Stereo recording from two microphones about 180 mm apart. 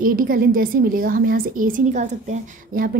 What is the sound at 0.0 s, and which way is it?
A woman's voice, 50° right (ahead or behind).